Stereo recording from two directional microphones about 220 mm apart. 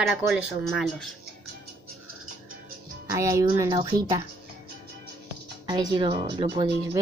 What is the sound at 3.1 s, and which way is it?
A woman's voice, 15° right (ahead or behind).